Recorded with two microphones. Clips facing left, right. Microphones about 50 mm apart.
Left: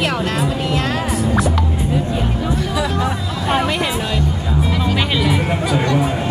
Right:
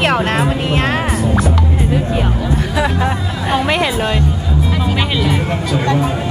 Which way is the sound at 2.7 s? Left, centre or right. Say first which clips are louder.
Right 3 dB; right.